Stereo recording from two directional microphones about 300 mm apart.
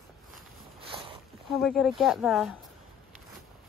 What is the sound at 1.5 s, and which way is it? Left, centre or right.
Speech, centre.